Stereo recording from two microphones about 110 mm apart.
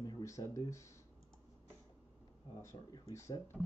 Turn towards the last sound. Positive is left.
turn(degrees=25)  # may be behind; listen again after turning